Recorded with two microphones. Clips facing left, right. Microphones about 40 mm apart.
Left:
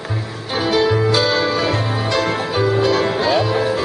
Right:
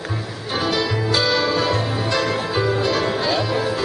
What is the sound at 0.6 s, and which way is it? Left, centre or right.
Music, left.